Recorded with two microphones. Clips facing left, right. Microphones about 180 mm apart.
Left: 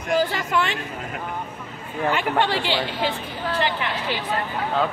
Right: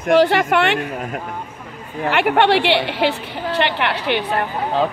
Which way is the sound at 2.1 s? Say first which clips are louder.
Right 9 dB; 70° right (ahead or behind).